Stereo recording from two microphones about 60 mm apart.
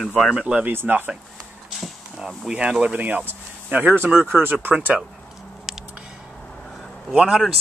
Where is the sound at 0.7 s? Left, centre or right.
Right.